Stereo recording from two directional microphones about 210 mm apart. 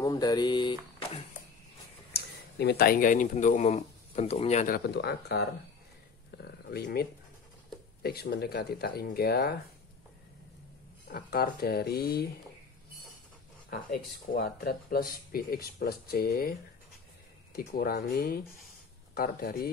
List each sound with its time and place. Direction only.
0.0 s speech: 20° left (ahead or behind)
2.6 s speech: 50° left (ahead or behind); by 4.7 s 30° left (ahead or behind)
4.7 s speech: 50° left (ahead or behind)
6.3 s a sound: 50° left (ahead or behind)
8.0 s speech: 50° left (ahead or behind)
11.1 s speech: 45° left (ahead or behind)
13.7 s speech: 45° left (ahead or behind)
17.6 s speech: 45° left (ahead or behind)